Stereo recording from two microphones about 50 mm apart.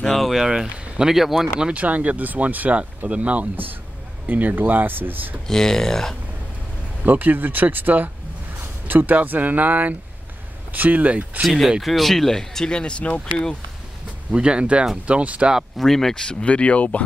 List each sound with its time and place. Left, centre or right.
0.0 s a sound: centre
0.5 s speech: centre
1.6 s speech: right
5.5 s speech: centre
7.1 s speech: right
11.4 s speech: centre
14.3 s speech: centre
15.8 s speech: centre
16.3 s speech: centre